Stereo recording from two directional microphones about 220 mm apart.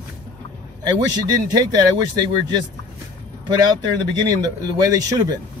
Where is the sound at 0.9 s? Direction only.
20° right (ahead or behind).